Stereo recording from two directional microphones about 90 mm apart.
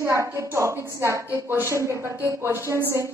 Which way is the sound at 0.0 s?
30° right (ahead or behind).